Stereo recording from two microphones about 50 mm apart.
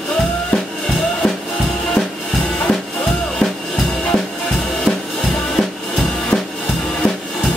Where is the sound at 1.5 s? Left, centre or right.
Centre.